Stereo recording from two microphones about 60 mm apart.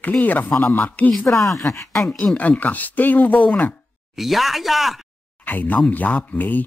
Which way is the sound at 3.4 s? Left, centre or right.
Centre.